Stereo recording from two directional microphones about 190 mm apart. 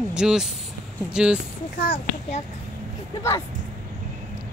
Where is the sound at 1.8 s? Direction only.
50° left (ahead or behind).